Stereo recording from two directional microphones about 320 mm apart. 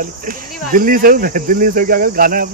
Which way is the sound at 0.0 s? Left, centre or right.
Right.